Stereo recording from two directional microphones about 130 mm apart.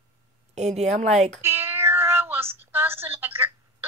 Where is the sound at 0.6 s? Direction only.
60° right (ahead or behind).